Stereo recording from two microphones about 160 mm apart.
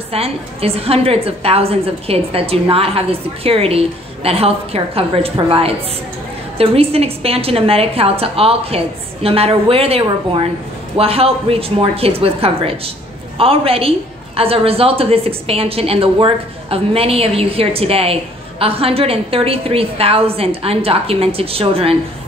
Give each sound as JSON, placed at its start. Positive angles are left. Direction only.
{"t": 0.1, "sound": "a woman's voice", "side_deg": -40}